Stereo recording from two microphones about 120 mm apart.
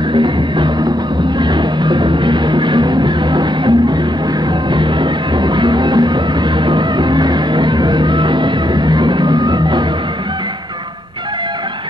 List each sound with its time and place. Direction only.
0.1 s music: 40° right (ahead or behind)
5.4 s music: 40° right (ahead or behind)